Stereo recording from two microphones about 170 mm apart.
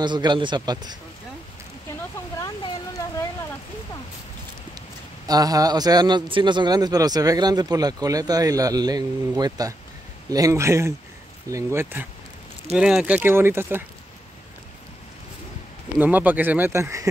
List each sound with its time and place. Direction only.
0.0 s a man's voice: 25° right (ahead or behind)
2.3 s a sound: 20° left (ahead or behind)
4.7 s a man's voice: 20° right (ahead or behind)
16.0 s speech: 10° right (ahead or behind)